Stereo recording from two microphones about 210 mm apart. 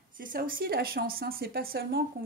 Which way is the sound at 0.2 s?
40° right (ahead or behind).